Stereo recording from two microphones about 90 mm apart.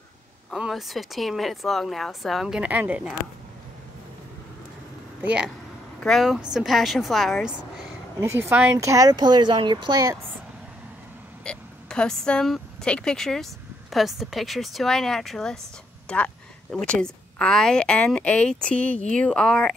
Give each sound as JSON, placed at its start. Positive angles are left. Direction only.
{"t": 0.6, "sound": "speech", "side_deg": 0}
{"t": 5.2, "sound": "speech", "side_deg": -15}
{"t": 5.9, "sound": "speech", "side_deg": 5}
{"t": 6.3, "sound": "speech", "side_deg": -10}
{"t": 8.2, "sound": "speech", "side_deg": -30}
{"t": 9.1, "sound": "speech", "side_deg": -55}
{"t": 11.4, "sound": "speech", "side_deg": 10}